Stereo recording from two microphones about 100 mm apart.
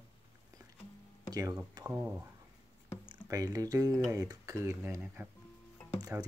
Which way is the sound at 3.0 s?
40° right (ahead or behind).